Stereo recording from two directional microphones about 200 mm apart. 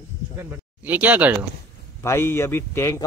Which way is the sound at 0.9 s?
10° right (ahead or behind).